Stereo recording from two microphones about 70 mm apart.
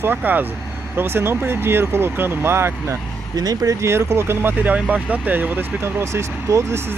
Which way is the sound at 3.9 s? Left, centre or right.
Right.